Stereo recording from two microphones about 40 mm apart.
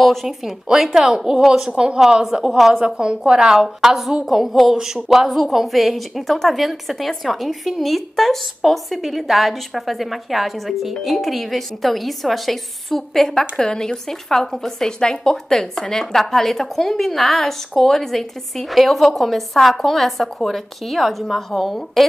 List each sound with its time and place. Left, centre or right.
0.0 s a woman's voice: centre
0.9 s a woman's voice: centre
2.8 s a woman's voice: right
3.5 s a woman's voice: centre
4.7 s a woman's voice: centre
5.3 s a woman's voice: centre